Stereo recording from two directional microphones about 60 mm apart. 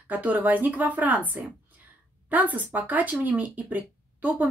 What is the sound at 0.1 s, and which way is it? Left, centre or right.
Speech, right.